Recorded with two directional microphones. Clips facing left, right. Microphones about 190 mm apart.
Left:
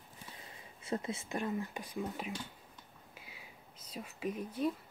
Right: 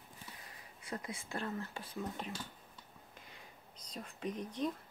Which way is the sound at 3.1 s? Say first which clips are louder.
Left 3 dB; 5° left (ahead or behind).